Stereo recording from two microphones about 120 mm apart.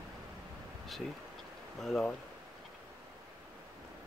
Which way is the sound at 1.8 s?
5° left (ahead or behind).